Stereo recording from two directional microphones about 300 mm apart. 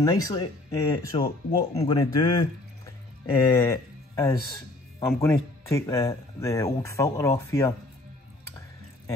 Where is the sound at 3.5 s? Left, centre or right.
Centre.